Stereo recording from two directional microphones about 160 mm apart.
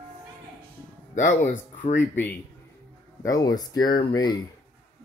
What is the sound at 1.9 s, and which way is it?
Speech, 10° left (ahead or behind).